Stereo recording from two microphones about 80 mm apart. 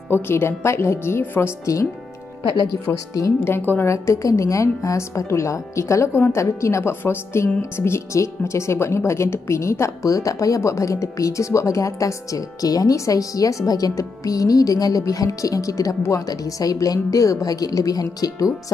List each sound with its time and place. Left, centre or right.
0.1 s a woman's voice: left
2.4 s speech: left
2.9 s a woman's voice: left